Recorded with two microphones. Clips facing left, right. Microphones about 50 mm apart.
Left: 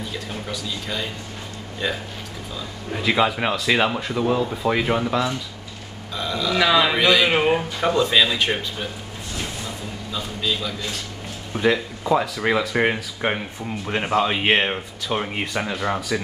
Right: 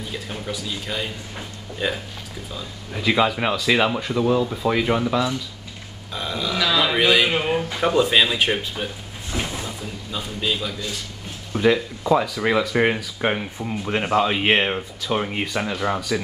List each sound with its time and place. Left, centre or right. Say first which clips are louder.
0.3 s speech: even; centre
3.1 s speech: right 1 dB; centre
6.1 s speech: left 2 dB; centre
6.5 s speech: left 3 dB; centre
7.0 s speech: even; centre
7.2 s speech: left 3 dB; centre
7.8 s speech: right 1 dB; centre
10.1 s speech: even; centre
11.5 s speech: right 2 dB; centre